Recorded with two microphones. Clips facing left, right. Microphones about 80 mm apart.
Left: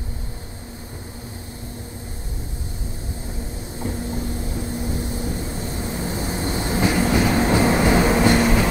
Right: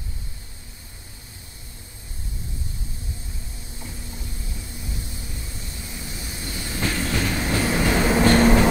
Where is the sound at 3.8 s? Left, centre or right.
Left.